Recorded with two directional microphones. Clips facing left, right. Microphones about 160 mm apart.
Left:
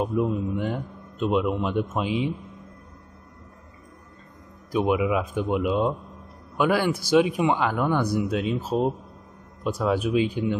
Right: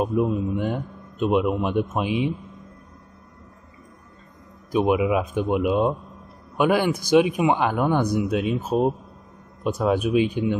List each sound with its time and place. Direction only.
0.0 s a man's voice: 15° right (ahead or behind)
4.7 s a man's voice: 20° right (ahead or behind)